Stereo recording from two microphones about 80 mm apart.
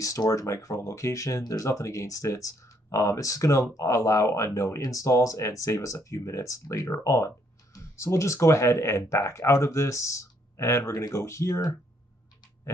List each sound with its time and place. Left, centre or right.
0.0 s speech: left